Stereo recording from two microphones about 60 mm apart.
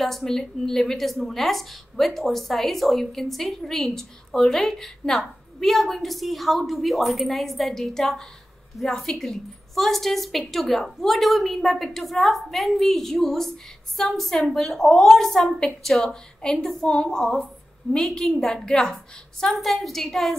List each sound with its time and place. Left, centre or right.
0.0 s a woman's voice: centre